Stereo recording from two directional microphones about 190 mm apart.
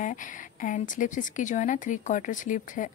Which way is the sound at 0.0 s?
40° left (ahead or behind).